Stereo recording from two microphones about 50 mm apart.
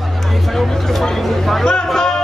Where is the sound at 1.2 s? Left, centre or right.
Centre.